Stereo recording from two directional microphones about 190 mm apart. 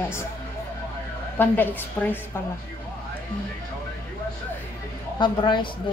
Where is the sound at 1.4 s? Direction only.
10° left (ahead or behind).